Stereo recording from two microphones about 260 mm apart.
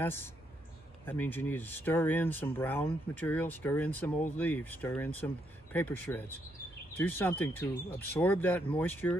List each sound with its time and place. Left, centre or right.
0.0 s speech: centre